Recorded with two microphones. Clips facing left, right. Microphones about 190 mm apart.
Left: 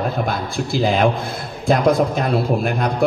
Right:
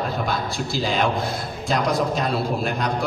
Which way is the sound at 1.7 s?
55° left (ahead or behind).